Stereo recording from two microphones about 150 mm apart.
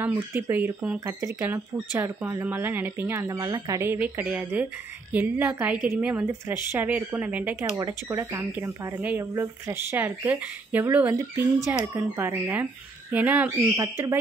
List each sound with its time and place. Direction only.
0.0 s speech: 10° right (ahead or behind)
3.3 s speech: 30° right (ahead or behind)